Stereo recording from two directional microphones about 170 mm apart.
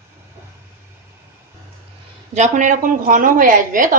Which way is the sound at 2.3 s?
45° right (ahead or behind).